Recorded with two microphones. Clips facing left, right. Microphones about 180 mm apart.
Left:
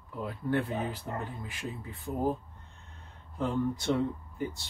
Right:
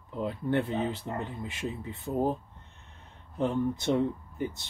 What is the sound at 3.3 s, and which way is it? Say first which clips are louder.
Speech: right 2 dB; 20° right (ahead or behind).